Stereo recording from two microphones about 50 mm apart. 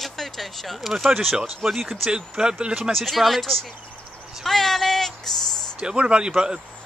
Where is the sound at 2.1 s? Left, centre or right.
Centre.